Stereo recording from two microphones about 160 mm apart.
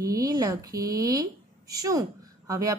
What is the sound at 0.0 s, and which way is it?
A woman's voice, 20° right (ahead or behind).